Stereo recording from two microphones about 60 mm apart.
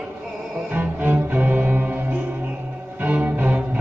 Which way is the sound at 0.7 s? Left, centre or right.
Right.